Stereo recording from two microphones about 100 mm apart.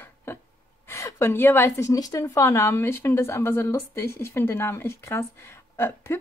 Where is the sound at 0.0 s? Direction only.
20° left (ahead or behind).